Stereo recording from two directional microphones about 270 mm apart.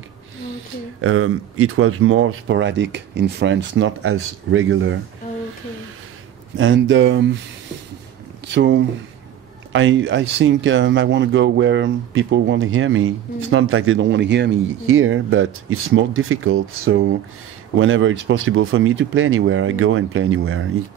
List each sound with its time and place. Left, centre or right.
1.0 s speech: right
6.5 s speech: right
8.5 s speech: right